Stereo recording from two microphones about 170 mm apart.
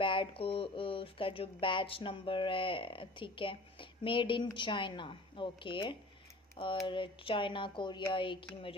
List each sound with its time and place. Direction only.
0.0 s speech: 30° left (ahead or behind)